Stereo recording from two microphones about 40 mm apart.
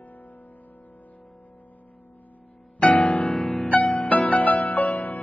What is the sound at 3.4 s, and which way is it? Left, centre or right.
Music, centre.